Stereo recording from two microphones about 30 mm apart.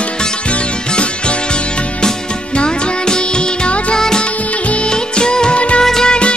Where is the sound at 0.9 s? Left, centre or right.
Left.